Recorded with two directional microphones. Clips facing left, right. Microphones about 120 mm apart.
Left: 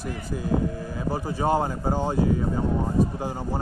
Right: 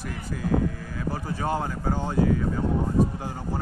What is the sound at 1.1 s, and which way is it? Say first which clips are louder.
Speech: left 5 dB; 30° left (ahead or behind).